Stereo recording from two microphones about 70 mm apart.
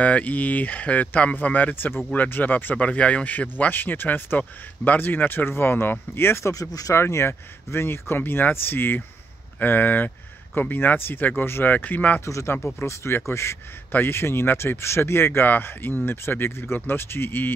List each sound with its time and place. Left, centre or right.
0.0 s speech: left
6.5 s speech: left
7.0 s speech: left
12.3 s a man's voice: left